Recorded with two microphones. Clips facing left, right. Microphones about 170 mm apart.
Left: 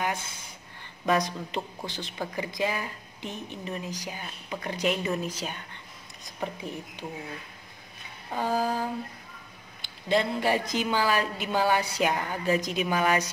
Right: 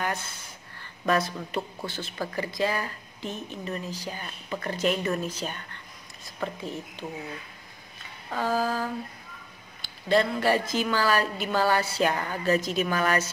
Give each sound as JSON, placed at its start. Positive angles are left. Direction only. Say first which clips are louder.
{"t": 1.0, "sound": "a woman's voice", "louder": "even", "side_deg": 15}
{"t": 8.3, "sound": "a woman's voice", "louder": "right 1 dB", "side_deg": 15}